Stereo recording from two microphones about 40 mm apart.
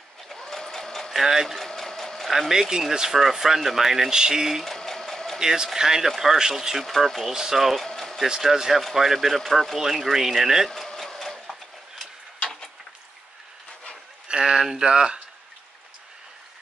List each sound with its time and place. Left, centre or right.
0.3 s sewing machine: centre
1.1 s speech: centre
1.6 s sewing machine: centre
2.2 s speech: centre
4.6 s sewing machine: centre
5.4 s speech: centre
7.8 s a sound: centre
8.3 s speech: centre
10.7 s a sound: centre
14.4 s speech: centre